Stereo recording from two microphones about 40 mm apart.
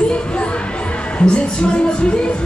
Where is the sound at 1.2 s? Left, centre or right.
Left.